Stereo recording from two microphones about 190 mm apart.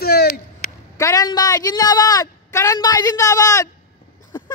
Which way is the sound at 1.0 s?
20° left (ahead or behind).